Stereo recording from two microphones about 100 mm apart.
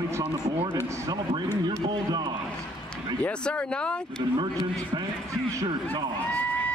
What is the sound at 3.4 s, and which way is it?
Speech, 10° left (ahead or behind).